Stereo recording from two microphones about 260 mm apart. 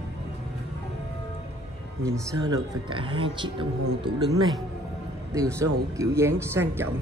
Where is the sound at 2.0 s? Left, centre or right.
Centre.